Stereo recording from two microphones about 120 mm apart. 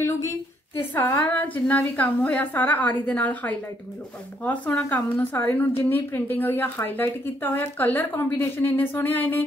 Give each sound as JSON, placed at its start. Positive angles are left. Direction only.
{"t": 0.7, "sound": "a woman's voice", "side_deg": 20}